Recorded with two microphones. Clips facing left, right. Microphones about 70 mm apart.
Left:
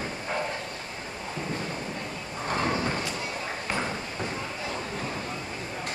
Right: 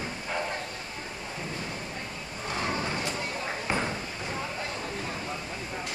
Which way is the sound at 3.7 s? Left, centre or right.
Centre.